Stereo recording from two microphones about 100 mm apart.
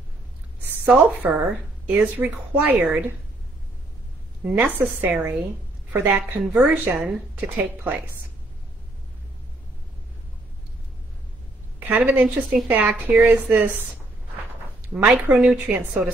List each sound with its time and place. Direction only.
1.2 s speech: 15° right (ahead or behind)
4.5 s a woman's voice: 15° right (ahead or behind)
6.4 s a woman's voice: 5° right (ahead or behind)
6.7 s speech: 15° right (ahead or behind)
11.8 s speech: 15° right (ahead or behind)
15.0 s a woman's voice: 20° right (ahead or behind)
15.3 s a woman's voice: 5° right (ahead or behind)
15.6 s a woman's voice: 20° right (ahead or behind)